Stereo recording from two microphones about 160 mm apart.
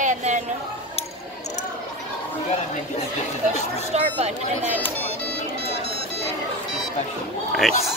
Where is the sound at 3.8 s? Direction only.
40° right (ahead or behind).